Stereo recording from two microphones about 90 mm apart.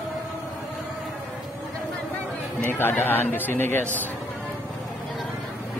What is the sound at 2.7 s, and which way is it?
A man's voice, 25° left (ahead or behind).